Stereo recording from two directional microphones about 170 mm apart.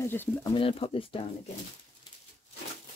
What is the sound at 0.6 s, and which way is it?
Speech, 35° left (ahead or behind).